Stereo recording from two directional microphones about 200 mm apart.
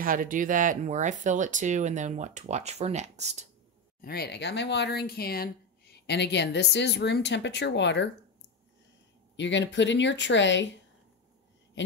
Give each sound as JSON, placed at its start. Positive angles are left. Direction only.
{"t": 0.0, "sound": "speech", "side_deg": -45}
{"t": 4.0, "sound": "speech", "side_deg": 50}
{"t": 9.4, "sound": "speech", "side_deg": 65}